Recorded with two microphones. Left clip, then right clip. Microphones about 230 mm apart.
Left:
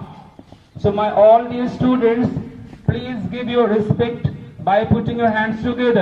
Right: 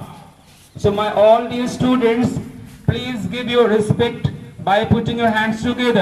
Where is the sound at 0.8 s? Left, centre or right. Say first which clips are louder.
Left 1 dB; right.